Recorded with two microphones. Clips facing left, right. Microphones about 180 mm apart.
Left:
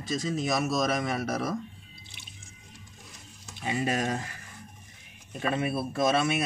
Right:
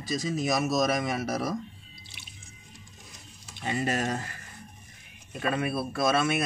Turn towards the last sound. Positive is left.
turn(degrees=15)  # may be behind; listen again after turning